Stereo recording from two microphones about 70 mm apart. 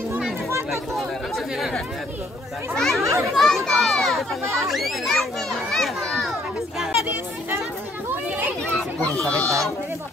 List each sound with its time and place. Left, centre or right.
2.7 s a child's voice: centre
3.0 s a child's voice: right
3.3 s a child's voice: centre
8.1 s children playing: right
9.1 s a sound: centre